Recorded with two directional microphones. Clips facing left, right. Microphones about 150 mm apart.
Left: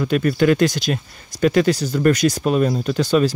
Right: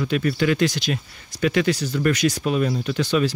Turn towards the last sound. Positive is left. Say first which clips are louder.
# left 4 dB
turn(degrees=40)  # may be behind; listen again after turning